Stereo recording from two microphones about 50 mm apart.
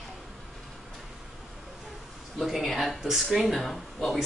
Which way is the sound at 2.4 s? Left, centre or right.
Centre.